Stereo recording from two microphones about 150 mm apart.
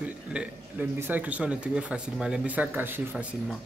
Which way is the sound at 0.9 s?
10° right (ahead or behind).